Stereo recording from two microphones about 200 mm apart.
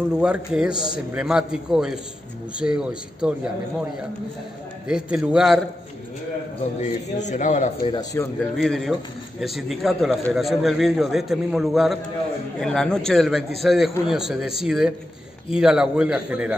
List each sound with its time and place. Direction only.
0.1 s a man's voice: 5° right (ahead or behind)
4.8 s a man's voice: 5° right (ahead or behind)
6.6 s a man's voice: 35° left (ahead or behind)
7.8 s speech: 20° left (ahead or behind)
8.5 s a man's voice: centre (ahead or behind)